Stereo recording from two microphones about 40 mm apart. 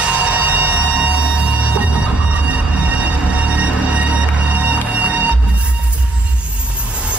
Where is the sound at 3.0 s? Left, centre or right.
Right.